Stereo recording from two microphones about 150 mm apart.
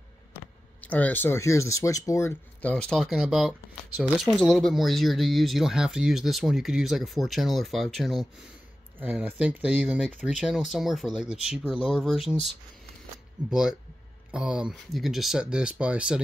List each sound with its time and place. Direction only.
0.3 s speech: 10° left (ahead or behind)
2.7 s speech: 5° left (ahead or behind)